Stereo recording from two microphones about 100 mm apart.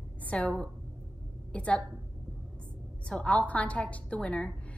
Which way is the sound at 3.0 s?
10° left (ahead or behind).